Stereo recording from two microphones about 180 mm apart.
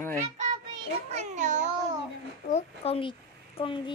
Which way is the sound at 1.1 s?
40° right (ahead or behind).